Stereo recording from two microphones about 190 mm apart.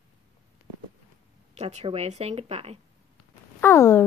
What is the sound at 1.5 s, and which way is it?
Speech, 35° right (ahead or behind).